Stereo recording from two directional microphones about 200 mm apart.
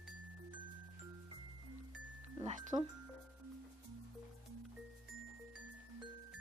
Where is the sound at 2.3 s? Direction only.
25° right (ahead or behind).